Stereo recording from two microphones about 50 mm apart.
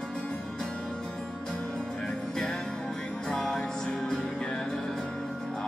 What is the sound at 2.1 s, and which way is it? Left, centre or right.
Music, centre.